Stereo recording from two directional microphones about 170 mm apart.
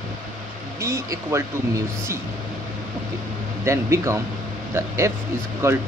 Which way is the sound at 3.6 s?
15° right (ahead or behind).